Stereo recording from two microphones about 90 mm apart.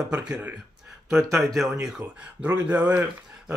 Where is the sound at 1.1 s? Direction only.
35° right (ahead or behind).